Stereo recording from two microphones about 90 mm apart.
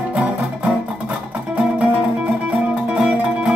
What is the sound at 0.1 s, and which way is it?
Music, 15° right (ahead or behind).